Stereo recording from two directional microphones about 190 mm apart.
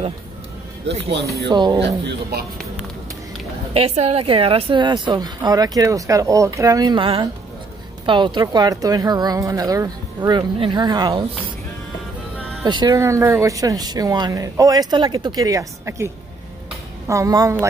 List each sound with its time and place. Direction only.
1.5 s a woman's voice: 25° right (ahead or behind)
1.8 s speech: 65° right (ahead or behind)
3.7 s a woman's voice: 35° right (ahead or behind)
12.6 s a woman's voice: 20° right (ahead or behind)
17.1 s a woman's voice: 15° right (ahead or behind)